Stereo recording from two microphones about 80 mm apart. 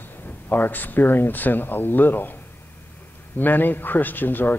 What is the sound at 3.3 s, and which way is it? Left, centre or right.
Speech, left.